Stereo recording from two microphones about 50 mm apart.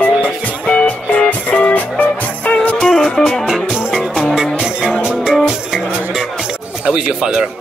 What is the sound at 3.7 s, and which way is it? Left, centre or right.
Music, centre.